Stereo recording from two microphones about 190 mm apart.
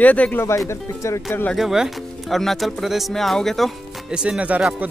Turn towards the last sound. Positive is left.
turn(degrees=-5)  # may be behind; listen again after turning